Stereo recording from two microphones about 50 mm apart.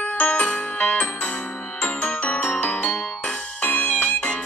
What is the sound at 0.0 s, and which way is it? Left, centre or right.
Music, left.